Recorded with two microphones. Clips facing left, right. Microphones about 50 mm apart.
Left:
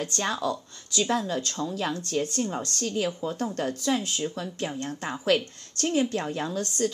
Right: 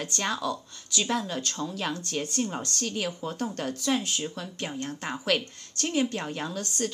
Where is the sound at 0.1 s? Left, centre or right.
Left.